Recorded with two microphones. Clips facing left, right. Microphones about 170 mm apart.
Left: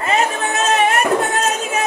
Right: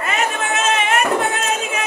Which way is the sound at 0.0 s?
35° left (ahead or behind).